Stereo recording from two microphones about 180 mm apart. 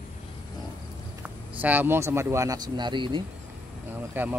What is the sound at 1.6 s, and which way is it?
Speech, 10° right (ahead or behind).